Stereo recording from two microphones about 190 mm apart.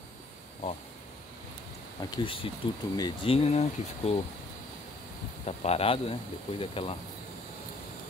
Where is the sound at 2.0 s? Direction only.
25° left (ahead or behind).